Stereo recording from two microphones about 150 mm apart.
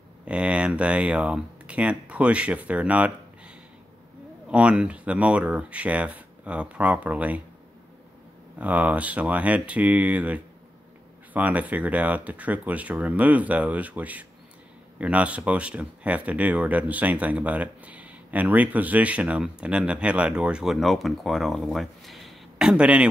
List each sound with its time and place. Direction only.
0.2 s speech: 10° right (ahead or behind)
8.5 s speech: 10° right (ahead or behind)